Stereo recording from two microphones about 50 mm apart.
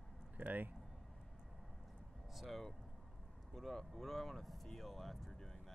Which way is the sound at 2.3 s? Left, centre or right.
Centre.